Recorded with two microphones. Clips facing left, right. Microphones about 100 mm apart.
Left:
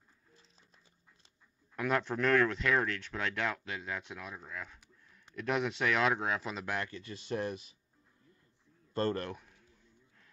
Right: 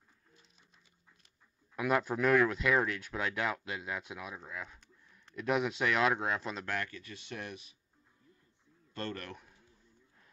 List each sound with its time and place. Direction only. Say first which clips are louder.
1.8 s speech: right 1 dB; 5° right (ahead or behind)
6.6 s speech: left 1 dB; 15° left (ahead or behind)
6.9 s speech: left 7 dB; 30° left (ahead or behind)
8.9 s speech: left 8 dB; 35° left (ahead or behind)